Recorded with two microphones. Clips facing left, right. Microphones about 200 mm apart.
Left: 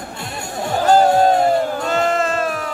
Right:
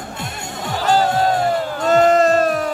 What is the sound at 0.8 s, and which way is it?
Music, 45° left (ahead or behind).